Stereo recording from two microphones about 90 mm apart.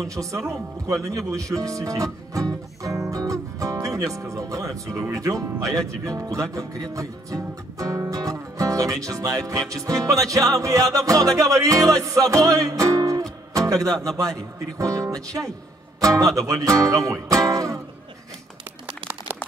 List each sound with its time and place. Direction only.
0.0 s music: 35° right (ahead or behind)
3.8 s speech: 35° right (ahead or behind)
4.7 s music: 35° right (ahead or behind)
16.0 s speech: 40° right (ahead or behind)